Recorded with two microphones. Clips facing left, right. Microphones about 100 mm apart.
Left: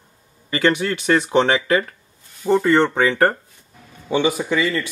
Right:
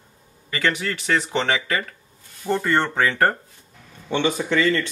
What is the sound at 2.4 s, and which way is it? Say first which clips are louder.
Speech: left 6 dB; 20° left (ahead or behind).